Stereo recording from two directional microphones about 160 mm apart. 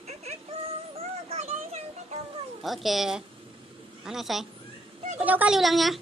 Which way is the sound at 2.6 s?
Centre (ahead or behind).